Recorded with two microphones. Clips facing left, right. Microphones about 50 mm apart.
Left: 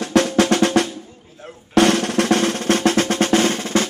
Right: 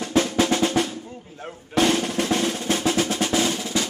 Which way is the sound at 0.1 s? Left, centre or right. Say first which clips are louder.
Left 5 dB; left.